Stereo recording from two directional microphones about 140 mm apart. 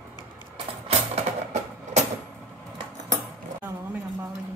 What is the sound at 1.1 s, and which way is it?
Music, 55° right (ahead or behind).